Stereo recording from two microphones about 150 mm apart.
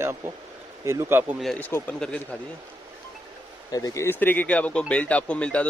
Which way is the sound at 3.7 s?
25° left (ahead or behind).